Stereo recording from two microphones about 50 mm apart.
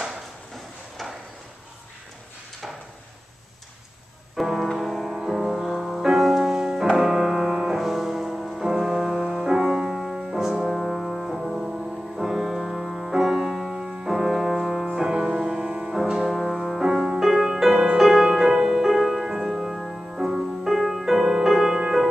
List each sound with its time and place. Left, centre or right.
4.4 s music: centre